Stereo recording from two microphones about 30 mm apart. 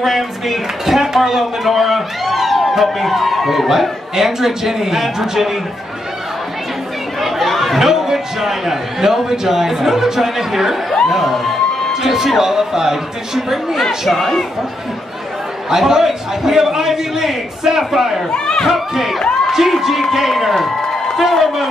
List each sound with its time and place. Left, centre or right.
0.0 s a man's voice: centre
7.2 s chatter: centre
7.8 s a man's voice: centre
11.9 s a man's voice: centre
14.0 s speech: centre
15.7 s a man's voice: centre
18.3 s speech: left
18.7 s a man's voice: centre